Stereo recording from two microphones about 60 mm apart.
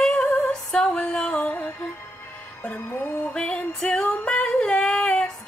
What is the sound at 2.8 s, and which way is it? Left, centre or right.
Music, left.